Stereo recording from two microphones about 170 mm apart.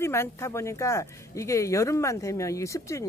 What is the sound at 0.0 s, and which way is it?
Speech, 15° left (ahead or behind).